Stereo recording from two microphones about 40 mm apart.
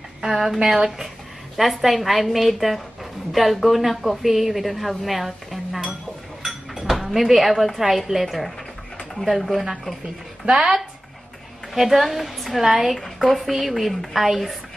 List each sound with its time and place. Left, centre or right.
0.2 s a woman's voice: centre
10.5 s a woman's voice: centre